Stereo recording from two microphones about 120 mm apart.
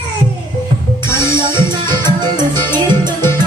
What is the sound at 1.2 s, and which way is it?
Music, 40° right (ahead or behind).